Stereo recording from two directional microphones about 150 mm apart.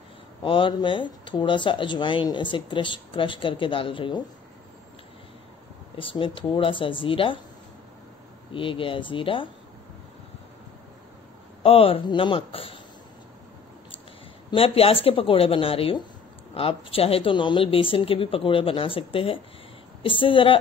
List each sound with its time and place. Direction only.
0.4 s speech: 35° left (ahead or behind)
5.9 s speech: 35° left (ahead or behind)
8.5 s speech: 35° left (ahead or behind)
11.6 s speech: 40° left (ahead or behind)
14.5 s speech: 40° left (ahead or behind)